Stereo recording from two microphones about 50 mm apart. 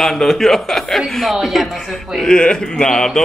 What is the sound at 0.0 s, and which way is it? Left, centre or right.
Speech, centre.